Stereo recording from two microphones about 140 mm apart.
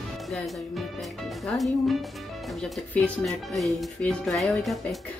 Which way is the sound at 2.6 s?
10° left (ahead or behind).